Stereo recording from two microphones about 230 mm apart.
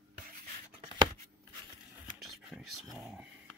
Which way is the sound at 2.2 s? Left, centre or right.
Centre.